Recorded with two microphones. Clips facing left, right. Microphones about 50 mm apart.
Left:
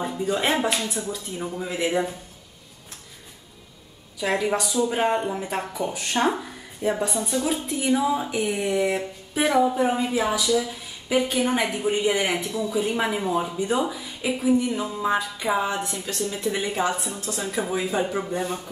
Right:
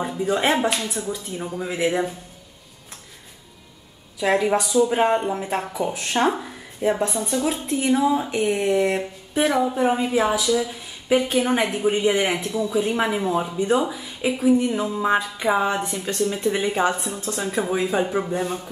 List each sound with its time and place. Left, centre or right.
0.0 s speech: centre
4.2 s speech: centre
15.0 s music: centre
15.4 s speech: centre